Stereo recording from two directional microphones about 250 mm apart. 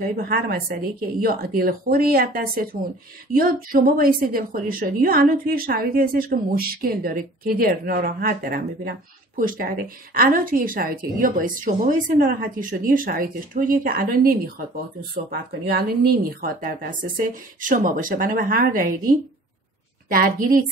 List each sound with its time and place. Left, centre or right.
0.0 s a woman's voice: right